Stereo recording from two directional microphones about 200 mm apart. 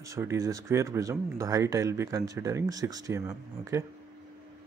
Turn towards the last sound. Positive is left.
turn(degrees=-15)  # may be behind; listen again after turning